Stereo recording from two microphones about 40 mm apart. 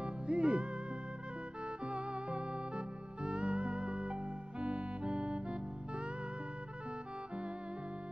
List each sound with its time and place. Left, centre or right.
0.0 s music: right
1.9 s music: right